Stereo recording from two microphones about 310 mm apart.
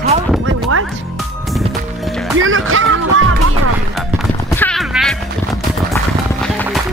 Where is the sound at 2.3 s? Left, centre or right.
Right.